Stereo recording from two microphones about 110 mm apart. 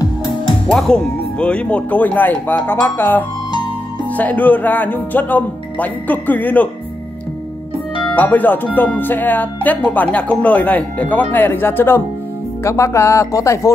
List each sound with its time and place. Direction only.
0.0 s music: 40° left (ahead or behind)
0.7 s speech: 5° left (ahead or behind)
8.1 s speech: 15° left (ahead or behind)